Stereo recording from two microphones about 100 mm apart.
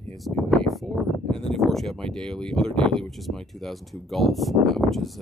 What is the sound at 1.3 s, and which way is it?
Speech, centre (ahead or behind).